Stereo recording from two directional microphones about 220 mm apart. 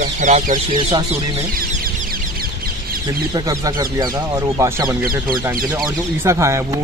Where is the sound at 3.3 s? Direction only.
15° right (ahead or behind).